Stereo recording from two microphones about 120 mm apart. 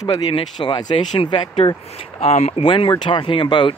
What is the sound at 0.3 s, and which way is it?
Speech, 40° left (ahead or behind).